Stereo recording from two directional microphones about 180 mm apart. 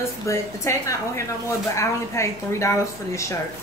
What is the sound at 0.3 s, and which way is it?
A woman's voice, 15° left (ahead or behind).